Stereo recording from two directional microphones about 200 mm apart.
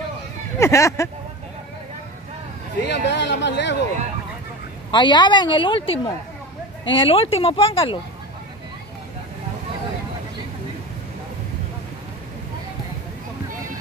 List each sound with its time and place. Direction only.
0.6 s speech: 15° left (ahead or behind)
2.8 s speech: 60° left (ahead or behind)
4.9 s a woman's voice: 20° left (ahead or behind)